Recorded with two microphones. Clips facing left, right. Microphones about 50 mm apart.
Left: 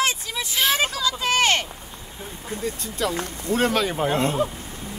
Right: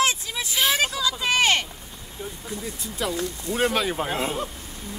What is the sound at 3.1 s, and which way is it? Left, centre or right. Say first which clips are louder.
Speech: even; left.